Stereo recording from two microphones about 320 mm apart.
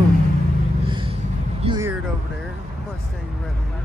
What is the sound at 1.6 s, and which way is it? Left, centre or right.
Music, centre.